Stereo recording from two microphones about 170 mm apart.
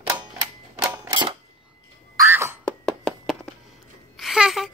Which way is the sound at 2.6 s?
Centre (ahead or behind).